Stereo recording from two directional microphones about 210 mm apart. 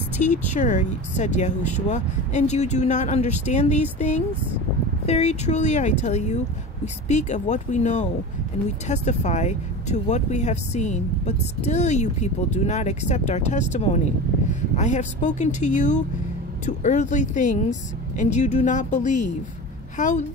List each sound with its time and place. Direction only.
0.2 s speech: 35° left (ahead or behind)
5.0 s speech: 30° left (ahead or behind)